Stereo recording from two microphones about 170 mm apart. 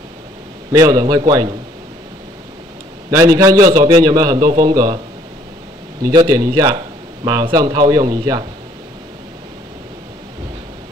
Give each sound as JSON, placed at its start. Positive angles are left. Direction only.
{"t": 0.7, "sound": "a man's voice", "side_deg": -25}
{"t": 3.1, "sound": "a man's voice", "side_deg": -20}
{"t": 6.0, "sound": "a man's voice", "side_deg": -25}